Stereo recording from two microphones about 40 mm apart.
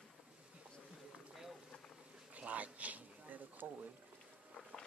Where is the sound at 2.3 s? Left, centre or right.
Right.